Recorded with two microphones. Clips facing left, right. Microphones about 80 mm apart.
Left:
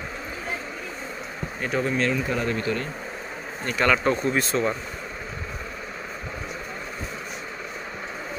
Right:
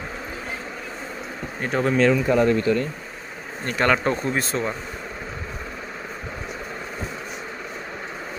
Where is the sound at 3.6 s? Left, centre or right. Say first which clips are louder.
Right 1 dB; right.